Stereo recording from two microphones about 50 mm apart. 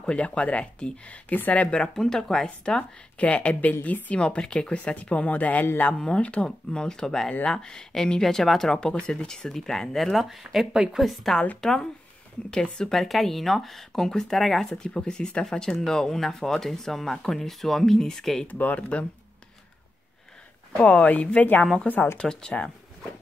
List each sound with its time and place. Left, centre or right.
0.0 s a woman's voice: centre
1.7 s a woman's voice: centre; by 4.2 s left
4.2 s speech: centre
5.9 s speech: centre
10.1 s speech: centre
10.7 s a woman's voice: centre
11.0 s speech: centre
11.6 s speech: centre
12.9 s speech: centre
18.5 s speech: left
20.7 s speech: left